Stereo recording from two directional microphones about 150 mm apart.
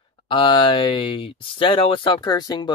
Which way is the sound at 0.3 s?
35° left (ahead or behind).